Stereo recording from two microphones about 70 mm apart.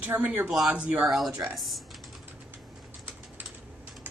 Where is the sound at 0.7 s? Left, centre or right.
Centre.